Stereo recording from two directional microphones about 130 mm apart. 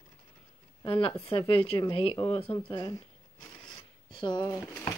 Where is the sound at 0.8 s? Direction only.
45° left (ahead or behind).